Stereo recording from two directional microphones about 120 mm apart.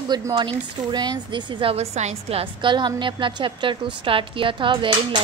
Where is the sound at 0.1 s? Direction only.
35° right (ahead or behind).